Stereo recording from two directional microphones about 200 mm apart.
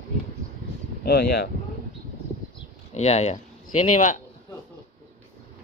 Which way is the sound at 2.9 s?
35° left (ahead or behind).